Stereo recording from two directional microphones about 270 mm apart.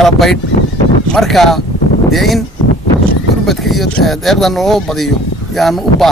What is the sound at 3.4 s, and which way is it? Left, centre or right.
Speech, centre.